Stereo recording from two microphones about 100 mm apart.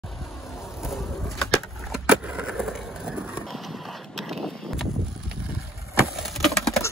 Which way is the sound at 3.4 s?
Centre (ahead or behind).